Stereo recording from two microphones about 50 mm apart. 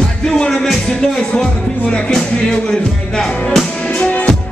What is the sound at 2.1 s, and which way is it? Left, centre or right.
Music, centre.